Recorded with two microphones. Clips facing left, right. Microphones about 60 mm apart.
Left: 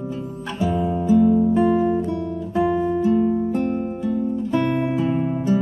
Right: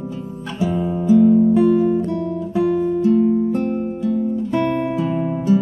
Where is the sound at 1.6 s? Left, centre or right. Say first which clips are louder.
Right 3 dB; left.